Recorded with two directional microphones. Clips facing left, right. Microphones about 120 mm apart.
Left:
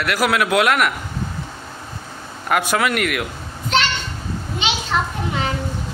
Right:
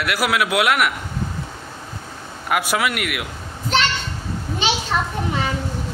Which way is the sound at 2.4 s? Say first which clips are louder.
Left 2 dB; 5° right (ahead or behind).